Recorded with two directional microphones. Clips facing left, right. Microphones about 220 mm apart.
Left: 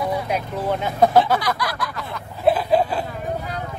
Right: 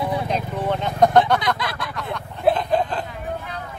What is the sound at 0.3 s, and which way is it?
Vehicle, 5° left (ahead or behind).